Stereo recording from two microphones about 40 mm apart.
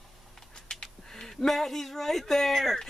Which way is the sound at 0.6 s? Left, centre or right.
Left.